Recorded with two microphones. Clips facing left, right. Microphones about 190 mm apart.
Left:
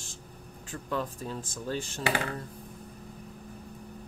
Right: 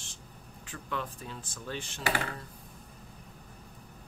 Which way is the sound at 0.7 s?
40° left (ahead or behind).